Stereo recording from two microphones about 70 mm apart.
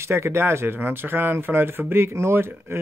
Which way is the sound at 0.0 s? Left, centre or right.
Right.